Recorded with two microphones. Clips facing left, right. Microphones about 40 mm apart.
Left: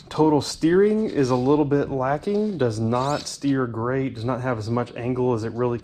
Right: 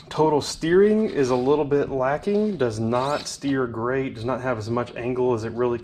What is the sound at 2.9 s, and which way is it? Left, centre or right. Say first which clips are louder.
Speech: even; centre.